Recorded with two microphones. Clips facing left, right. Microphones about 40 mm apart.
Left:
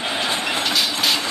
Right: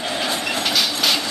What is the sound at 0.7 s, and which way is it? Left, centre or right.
Train, centre.